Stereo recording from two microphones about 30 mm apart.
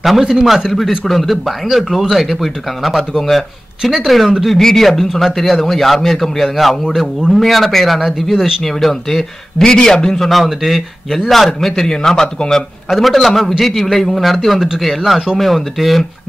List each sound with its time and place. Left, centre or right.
0.2 s speech: centre
0.7 s a man's voice: centre
2.0 s speech: centre
2.2 s a man's voice: centre
3.8 s speech: centre
4.6 s speech: centre
4.8 s a man's voice: centre
8.8 s speech: centre
9.8 s a man's voice: centre
10.3 s speech: centre
12.9 s a man's voice: centre